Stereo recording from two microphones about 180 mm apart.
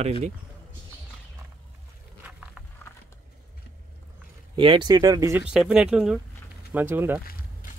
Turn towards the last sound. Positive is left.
turn(degrees=-10)  # may be behind; listen again after turning